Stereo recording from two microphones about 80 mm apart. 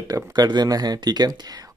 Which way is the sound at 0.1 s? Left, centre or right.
Right.